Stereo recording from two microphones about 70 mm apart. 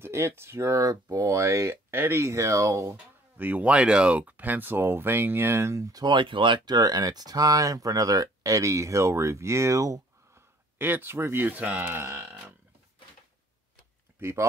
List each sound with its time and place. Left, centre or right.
0.0 s speech: right
3.3 s speech: right
6.0 s speech: right
10.8 s speech: right
11.4 s speech: right